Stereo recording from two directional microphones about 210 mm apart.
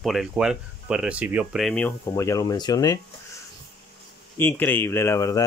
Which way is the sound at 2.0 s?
15° left (ahead or behind).